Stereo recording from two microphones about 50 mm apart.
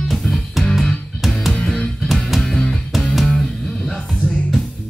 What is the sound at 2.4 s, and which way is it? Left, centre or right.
Music, centre.